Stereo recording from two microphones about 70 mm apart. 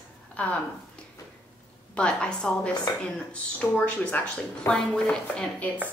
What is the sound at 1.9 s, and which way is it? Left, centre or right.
Speech, centre.